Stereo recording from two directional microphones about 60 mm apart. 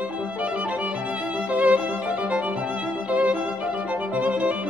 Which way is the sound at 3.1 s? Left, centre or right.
Right.